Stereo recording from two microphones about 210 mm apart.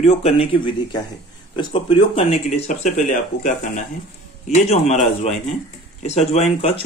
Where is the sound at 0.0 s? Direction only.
30° left (ahead or behind).